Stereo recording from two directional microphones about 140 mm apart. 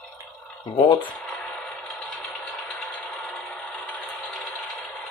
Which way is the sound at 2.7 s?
5° left (ahead or behind).